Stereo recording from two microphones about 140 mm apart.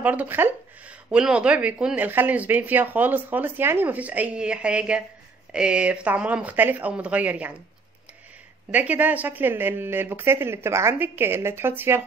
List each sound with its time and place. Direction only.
0.0 s speech: 10° right (ahead or behind)
8.7 s speech: 10° right (ahead or behind)